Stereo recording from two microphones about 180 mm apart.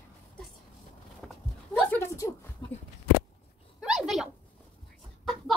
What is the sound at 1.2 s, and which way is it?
Dog, 5° left (ahead or behind).